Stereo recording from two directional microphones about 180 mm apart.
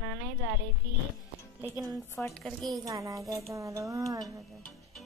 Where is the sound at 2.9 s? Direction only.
20° right (ahead or behind).